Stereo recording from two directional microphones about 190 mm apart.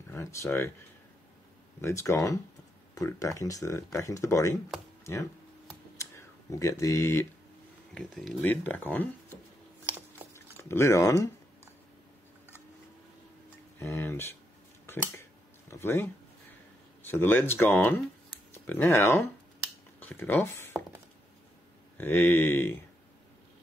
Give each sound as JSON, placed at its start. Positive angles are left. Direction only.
{"t": 0.1, "sound": "speech", "side_deg": 15}
{"t": 1.8, "sound": "speech", "side_deg": 15}
{"t": 5.0, "sound": "computer keyboard", "side_deg": 15}
{"t": 7.9, "sound": "speech", "side_deg": 0}
{"t": 9.8, "sound": "a sound", "side_deg": -10}
{"t": 10.3, "sound": "a sound", "side_deg": 15}
{"t": 13.7, "sound": "speech", "side_deg": 15}
{"t": 15.7, "sound": "speech", "side_deg": 10}
{"t": 21.9, "sound": "speech", "side_deg": 10}